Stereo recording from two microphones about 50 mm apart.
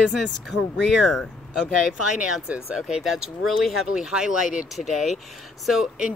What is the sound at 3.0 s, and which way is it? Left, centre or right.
Speech, centre.